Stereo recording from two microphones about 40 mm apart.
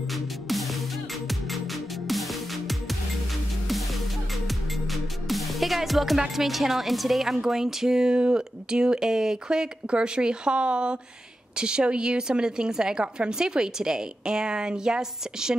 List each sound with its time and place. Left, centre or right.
0.1 s music: centre
4.5 s music: centre
7.3 s a woman's voice: centre